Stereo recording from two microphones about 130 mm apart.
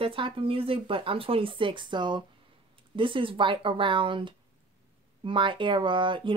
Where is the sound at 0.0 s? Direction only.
45° right (ahead or behind).